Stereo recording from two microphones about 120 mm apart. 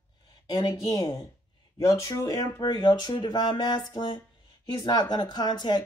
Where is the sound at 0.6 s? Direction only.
30° left (ahead or behind).